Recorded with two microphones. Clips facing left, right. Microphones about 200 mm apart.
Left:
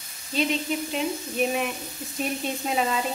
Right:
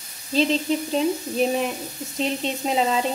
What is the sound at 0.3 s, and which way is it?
Speech, 30° right (ahead or behind).